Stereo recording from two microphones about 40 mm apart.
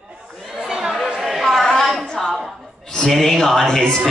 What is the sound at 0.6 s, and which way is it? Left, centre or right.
Chatter, centre.